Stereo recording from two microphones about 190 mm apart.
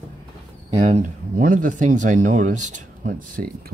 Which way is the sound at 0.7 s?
35° right (ahead or behind).